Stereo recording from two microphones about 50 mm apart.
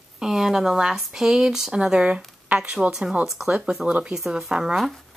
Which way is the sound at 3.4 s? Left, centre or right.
Right.